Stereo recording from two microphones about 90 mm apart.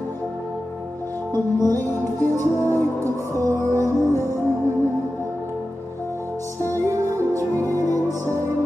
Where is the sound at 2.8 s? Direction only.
35° right (ahead or behind).